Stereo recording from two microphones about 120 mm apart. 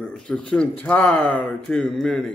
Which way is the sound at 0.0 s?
5° left (ahead or behind).